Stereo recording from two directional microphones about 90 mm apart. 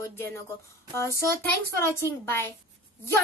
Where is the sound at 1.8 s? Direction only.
30° left (ahead or behind).